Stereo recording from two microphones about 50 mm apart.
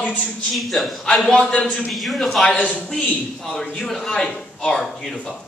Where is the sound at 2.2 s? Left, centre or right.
Centre.